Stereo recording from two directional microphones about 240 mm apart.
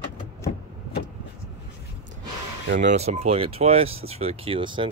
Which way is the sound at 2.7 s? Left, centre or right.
Right.